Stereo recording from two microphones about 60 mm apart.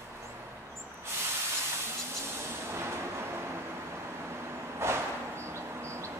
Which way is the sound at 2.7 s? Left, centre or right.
Right.